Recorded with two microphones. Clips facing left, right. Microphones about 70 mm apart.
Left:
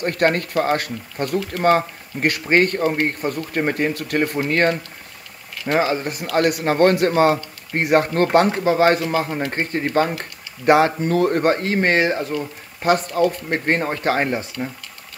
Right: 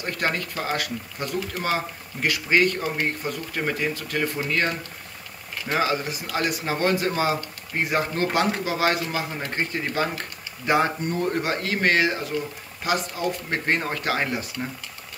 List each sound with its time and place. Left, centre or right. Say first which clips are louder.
0.0 s speech: left 8 dB; left
5.7 s speech: left 5 dB; left
6.3 s speech: left 8 dB; left
10.7 s speech: left 7 dB; left
11.3 s speech: left 7 dB; left
12.8 s speech: left 8 dB; left